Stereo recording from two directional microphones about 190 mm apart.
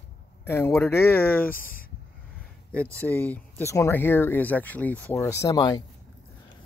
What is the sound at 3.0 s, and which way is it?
Speech, 10° left (ahead or behind).